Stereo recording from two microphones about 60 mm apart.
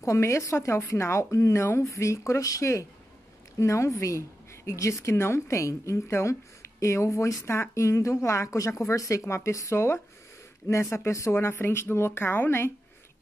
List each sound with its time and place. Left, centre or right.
0.0 s speech: left
7.4 s speech: left